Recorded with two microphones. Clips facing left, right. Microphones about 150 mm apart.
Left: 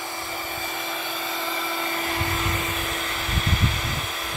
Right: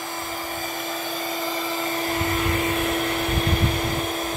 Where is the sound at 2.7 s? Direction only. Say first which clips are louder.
Right 7 dB; 55° right (ahead or behind).